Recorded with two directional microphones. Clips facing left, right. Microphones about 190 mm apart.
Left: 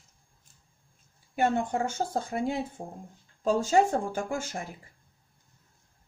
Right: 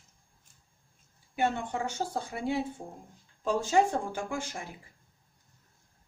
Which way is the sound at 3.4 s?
40° left (ahead or behind).